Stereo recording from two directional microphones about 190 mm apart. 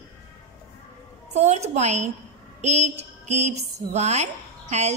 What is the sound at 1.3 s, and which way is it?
A woman's voice, 35° right (ahead or behind).